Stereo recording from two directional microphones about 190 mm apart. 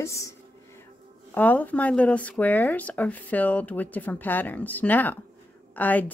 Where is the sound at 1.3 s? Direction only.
10° left (ahead or behind).